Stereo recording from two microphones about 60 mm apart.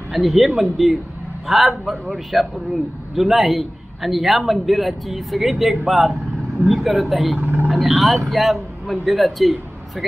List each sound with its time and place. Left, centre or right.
0.1 s a man's voice: centre
7.3 s speech: right
7.6 s a man's voice: centre